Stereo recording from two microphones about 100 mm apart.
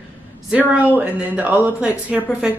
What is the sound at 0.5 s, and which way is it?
A woman's voice, 15° right (ahead or behind).